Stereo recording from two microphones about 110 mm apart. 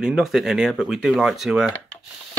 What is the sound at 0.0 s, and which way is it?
Speech, 5° right (ahead or behind).